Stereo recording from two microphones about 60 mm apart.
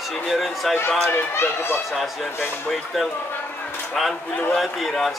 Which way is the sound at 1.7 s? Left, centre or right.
Centre.